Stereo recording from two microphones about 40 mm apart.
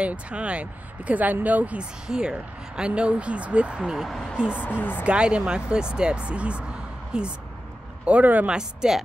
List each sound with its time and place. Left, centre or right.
0.0 s speech: right
1.8 s speech: right
3.8 s speech: centre
4.6 s a woman's voice: left
5.0 s speech: right
8.0 s speech: right
8.5 s speech: centre